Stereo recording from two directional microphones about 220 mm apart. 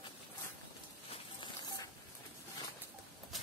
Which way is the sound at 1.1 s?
20° left (ahead or behind).